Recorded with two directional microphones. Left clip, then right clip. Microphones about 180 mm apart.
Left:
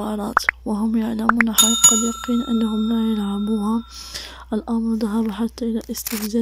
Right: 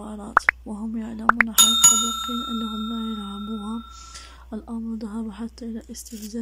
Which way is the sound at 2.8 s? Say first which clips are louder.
Left 8 dB; 20° left (ahead or behind).